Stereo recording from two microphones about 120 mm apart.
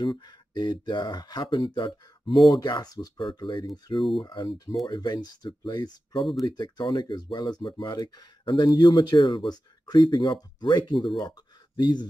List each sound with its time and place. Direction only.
0.0 s speech: 35° left (ahead or behind)
2.3 s speech: centre (ahead or behind)
2.6 s speech: 35° left (ahead or behind)
3.2 s speech: 45° left (ahead or behind)